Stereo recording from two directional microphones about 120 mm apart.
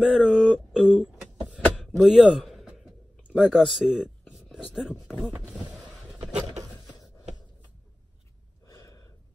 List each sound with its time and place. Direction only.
0.0 s a sound: 5° right (ahead or behind)
3.5 s speech: centre (ahead or behind)
4.3 s whispering: 5° right (ahead or behind)
8.6 s gasp: 25° left (ahead or behind)